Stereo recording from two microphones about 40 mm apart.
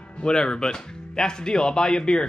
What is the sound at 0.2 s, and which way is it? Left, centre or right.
Speech, centre.